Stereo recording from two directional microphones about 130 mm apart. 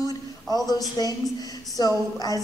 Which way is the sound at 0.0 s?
30° left (ahead or behind).